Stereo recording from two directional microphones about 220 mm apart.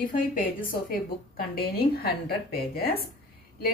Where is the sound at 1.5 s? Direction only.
45° left (ahead or behind).